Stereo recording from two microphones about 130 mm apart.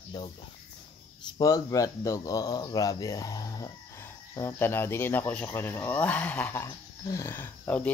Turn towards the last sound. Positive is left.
turn(degrees=15)  # may be behind; listen again after turning